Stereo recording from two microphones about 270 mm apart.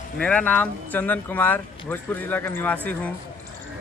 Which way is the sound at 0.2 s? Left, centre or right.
Centre.